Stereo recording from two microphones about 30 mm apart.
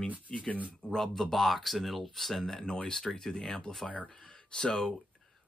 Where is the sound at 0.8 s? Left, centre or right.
Left.